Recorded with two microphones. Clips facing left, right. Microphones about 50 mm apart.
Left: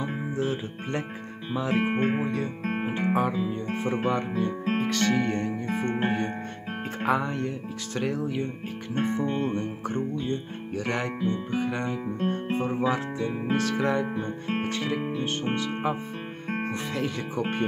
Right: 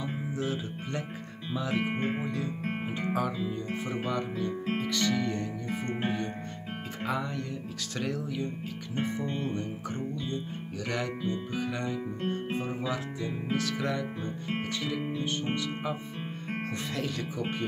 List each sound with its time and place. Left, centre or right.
0.0 s music: left
1.5 s speech: left
3.6 s music: left
7.0 s speech: left